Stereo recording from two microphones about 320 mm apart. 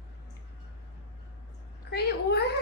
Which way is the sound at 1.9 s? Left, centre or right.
Left.